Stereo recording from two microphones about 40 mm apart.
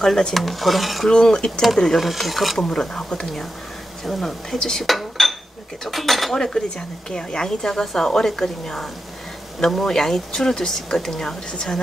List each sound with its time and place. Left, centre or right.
0.3 s speech: centre
1.0 s speech: centre
1.6 s speech: centre
2.7 s speech: centre
4.0 s speech: centre
4.8 s dishes: centre
5.9 s speech: centre
6.3 s speech: centre